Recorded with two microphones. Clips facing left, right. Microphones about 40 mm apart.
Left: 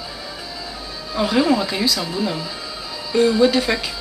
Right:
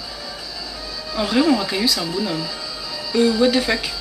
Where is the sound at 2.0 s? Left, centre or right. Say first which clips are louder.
Even; centre.